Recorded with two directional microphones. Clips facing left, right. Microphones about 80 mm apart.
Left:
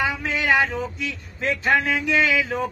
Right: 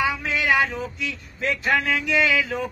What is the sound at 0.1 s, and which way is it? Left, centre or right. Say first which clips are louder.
Speech: left 1 dB; left.